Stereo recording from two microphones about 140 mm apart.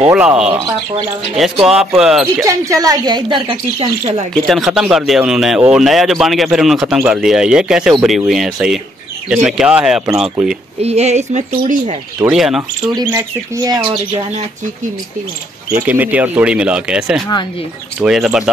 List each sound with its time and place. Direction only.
0.0 s speech: 10° right (ahead or behind)
2.4 s speech: 25° right (ahead or behind)
4.3 s speech: centre (ahead or behind)
10.8 s speech: 50° right (ahead or behind)
12.3 s speech: 5° right (ahead or behind)
13.6 s speech: 30° right (ahead or behind)
15.9 s speech: 10° right (ahead or behind)